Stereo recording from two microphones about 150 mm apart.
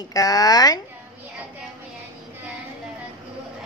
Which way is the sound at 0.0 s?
25° left (ahead or behind).